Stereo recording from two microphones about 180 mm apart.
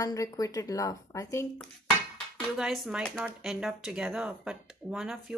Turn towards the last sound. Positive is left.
turn(degrees=-5)  # may be behind; listen again after turning